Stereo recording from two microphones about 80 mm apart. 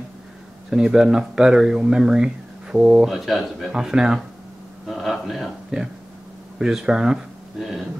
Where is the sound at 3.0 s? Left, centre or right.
Centre.